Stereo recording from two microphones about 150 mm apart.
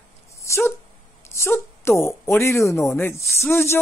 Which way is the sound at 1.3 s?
15° left (ahead or behind).